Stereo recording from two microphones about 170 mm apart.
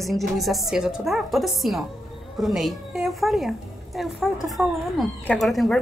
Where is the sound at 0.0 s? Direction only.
Centre (ahead or behind).